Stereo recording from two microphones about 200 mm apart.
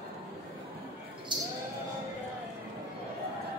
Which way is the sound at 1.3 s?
20° right (ahead or behind).